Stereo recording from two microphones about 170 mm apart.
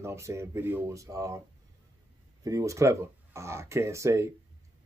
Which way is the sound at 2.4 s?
20° right (ahead or behind).